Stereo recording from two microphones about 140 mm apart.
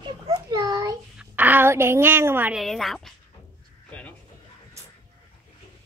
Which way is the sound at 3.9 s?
10° left (ahead or behind).